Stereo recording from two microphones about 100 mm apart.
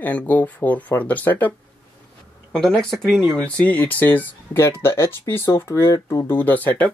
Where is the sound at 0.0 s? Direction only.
15° left (ahead or behind).